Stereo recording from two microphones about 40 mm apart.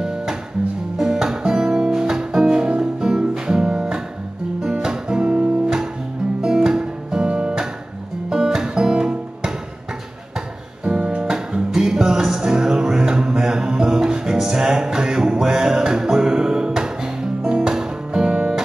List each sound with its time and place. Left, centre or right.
0.9 s music: centre
7.2 s music: right
8.6 s music: centre
10.8 s music: right
11.2 s music: centre
17.4 s music: right
17.6 s music: centre